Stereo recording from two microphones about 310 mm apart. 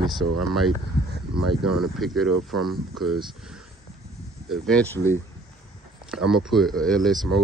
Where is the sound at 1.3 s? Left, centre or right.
Right.